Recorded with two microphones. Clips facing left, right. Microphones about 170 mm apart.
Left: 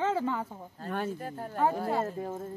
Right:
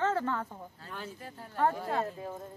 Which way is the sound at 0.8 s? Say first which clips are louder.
Left 11 dB; 50° left (ahead or behind).